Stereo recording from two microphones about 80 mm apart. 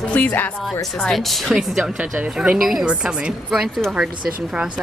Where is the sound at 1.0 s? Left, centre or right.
Centre.